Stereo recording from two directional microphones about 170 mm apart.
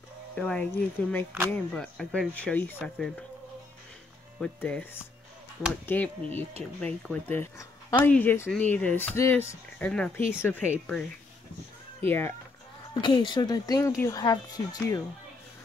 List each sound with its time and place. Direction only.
0.4 s speech: 5° left (ahead or behind)
4.4 s speech: 5° left (ahead or behind)
12.0 s speech: 15° left (ahead or behind)
13.0 s speech: 30° left (ahead or behind)